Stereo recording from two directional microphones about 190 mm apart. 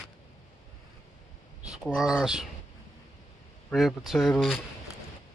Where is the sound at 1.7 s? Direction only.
5° right (ahead or behind).